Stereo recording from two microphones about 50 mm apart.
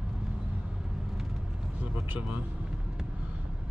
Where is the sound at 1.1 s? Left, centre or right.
Centre.